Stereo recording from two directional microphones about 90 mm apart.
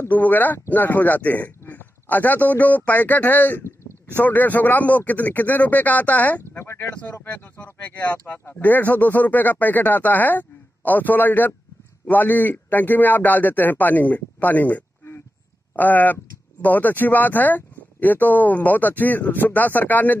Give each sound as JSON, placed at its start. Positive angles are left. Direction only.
{"t": 0.0, "sound": "speech", "side_deg": 20}